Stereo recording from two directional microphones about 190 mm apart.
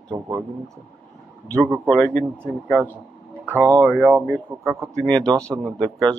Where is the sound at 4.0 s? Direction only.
5° right (ahead or behind); by 5.9 s 20° right (ahead or behind).